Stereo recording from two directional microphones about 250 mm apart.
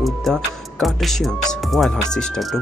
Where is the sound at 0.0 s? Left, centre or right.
Centre.